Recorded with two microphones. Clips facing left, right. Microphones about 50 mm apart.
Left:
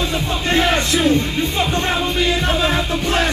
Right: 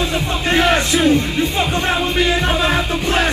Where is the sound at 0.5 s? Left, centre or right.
Centre.